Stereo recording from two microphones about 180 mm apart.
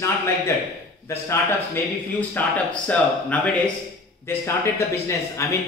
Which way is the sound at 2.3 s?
10° left (ahead or behind).